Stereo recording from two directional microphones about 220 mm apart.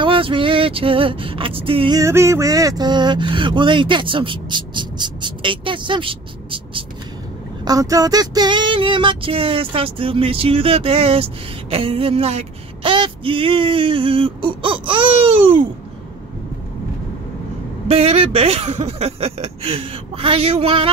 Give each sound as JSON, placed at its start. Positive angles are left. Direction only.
{"t": 0.0, "sound": "vehicle", "side_deg": -25}
{"t": 17.8, "sound": "vehicle", "side_deg": -25}